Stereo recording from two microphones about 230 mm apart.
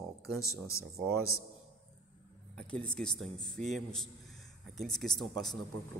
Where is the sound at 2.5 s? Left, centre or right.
Centre.